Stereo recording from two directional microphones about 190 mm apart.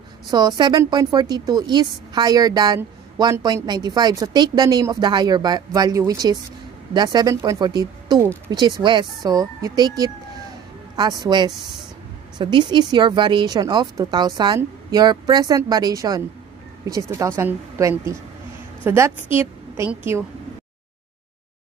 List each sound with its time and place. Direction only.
0.3 s a woman's voice: 20° right (ahead or behind)